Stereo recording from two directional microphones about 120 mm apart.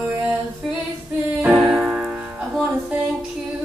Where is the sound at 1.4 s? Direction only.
10° right (ahead or behind).